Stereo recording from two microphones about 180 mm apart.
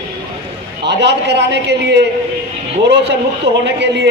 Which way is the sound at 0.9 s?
75° right (ahead or behind).